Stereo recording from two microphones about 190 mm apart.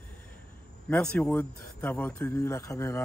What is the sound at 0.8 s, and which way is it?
Speech, 5° left (ahead or behind).